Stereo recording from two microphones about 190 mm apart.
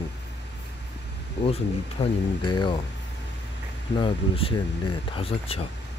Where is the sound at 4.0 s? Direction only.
30° left (ahead or behind).